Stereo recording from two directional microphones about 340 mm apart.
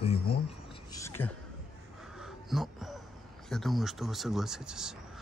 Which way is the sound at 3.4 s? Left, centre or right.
Centre.